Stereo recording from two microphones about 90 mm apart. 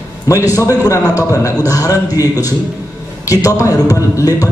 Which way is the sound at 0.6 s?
35° left (ahead or behind).